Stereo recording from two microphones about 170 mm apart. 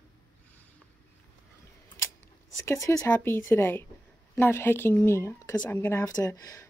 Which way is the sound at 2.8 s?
20° left (ahead or behind).